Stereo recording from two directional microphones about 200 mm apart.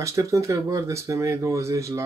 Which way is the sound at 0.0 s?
15° right (ahead or behind).